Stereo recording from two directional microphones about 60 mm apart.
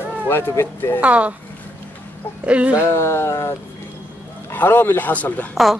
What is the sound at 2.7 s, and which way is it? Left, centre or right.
Speech, left.